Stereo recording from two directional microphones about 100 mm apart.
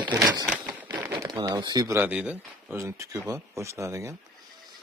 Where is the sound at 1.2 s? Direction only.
45° right (ahead or behind).